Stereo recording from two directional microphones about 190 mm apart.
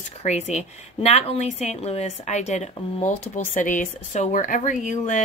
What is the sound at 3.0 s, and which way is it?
Speech, 10° left (ahead or behind).